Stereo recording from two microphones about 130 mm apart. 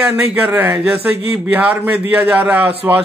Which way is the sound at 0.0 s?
10° right (ahead or behind).